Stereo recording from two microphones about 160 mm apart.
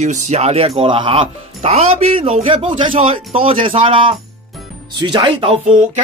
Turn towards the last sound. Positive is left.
turn(degrees=-45)  # may be behind; listen again after turning